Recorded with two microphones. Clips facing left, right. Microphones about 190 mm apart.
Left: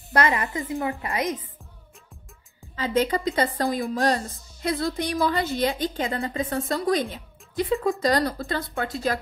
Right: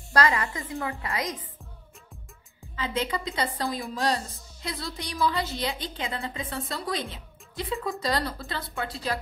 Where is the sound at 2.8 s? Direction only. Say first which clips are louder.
Left 6 dB; 40° left (ahead or behind).